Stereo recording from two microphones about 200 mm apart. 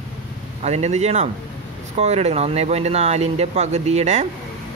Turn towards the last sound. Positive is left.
turn(degrees=-35)  # may be behind; listen again after turning